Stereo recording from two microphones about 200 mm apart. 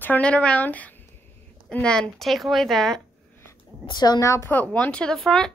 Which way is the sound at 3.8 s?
20° left (ahead or behind).